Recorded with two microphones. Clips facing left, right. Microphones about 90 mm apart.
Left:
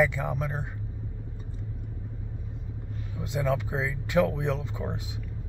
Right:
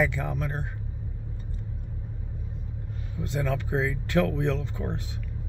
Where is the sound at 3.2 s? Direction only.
10° left (ahead or behind).